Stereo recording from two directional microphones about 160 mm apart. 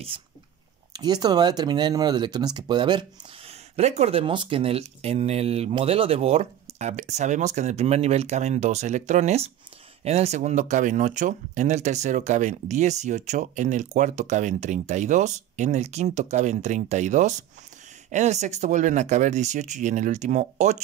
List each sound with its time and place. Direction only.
0.9 s speech: 25° right (ahead or behind); by 20.8 s 45° right (ahead or behind)